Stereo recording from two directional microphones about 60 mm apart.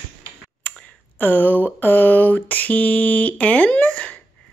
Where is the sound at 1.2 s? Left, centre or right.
Left.